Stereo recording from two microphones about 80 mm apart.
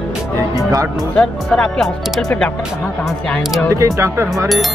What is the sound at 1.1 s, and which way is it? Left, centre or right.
Speech, centre.